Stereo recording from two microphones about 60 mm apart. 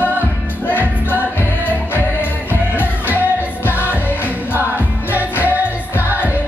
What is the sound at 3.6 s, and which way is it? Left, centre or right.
Music, left.